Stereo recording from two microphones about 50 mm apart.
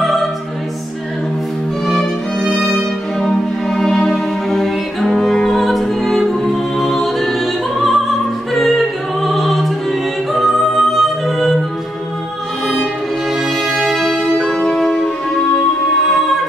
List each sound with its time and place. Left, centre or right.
0.0 s music: centre
1.9 s music: centre
8.5 s opera: centre
13.7 s music: centre
14.6 s music: centre